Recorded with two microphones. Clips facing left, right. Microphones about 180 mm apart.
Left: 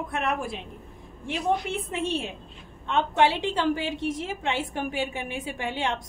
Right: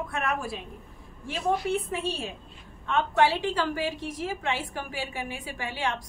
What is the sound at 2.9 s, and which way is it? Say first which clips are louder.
A woman's voice: left 1 dB; 20° left (ahead or behind).